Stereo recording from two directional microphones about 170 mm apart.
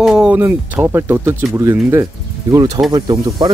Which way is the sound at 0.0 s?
5° right (ahead or behind).